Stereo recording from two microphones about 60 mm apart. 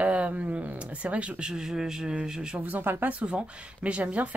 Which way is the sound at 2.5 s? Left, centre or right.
Right.